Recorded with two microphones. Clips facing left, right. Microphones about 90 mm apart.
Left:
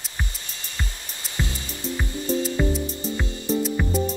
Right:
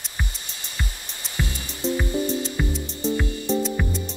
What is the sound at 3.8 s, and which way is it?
Music, 5° left (ahead or behind).